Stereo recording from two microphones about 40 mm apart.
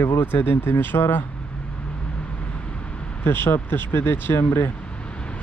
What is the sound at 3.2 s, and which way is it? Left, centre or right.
Speech, left.